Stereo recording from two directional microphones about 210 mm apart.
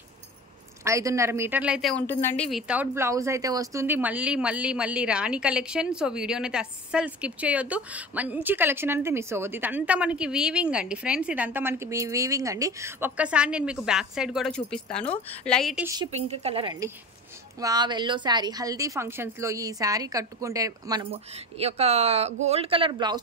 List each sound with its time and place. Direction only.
0.8 s speech: 15° right (ahead or behind); by 2.6 s 5° left (ahead or behind)
2.7 s speech: 10° right (ahead or behind)
15.8 s speech: 15° right (ahead or behind)
16.1 s a woman's voice: 30° right (ahead or behind)